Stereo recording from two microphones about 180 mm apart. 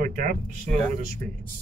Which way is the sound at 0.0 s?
45° right (ahead or behind).